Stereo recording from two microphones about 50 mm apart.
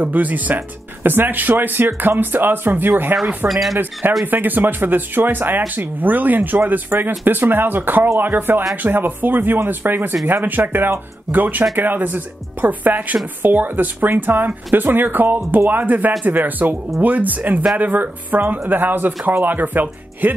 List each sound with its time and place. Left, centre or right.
0.0 s speech: right
3.4 s speech: centre
4.3 s speech: right